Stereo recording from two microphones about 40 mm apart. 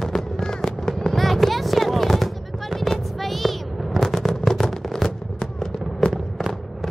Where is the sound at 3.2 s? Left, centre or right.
Centre.